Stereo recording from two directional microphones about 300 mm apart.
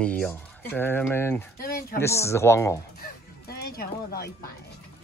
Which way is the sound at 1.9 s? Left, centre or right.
Centre.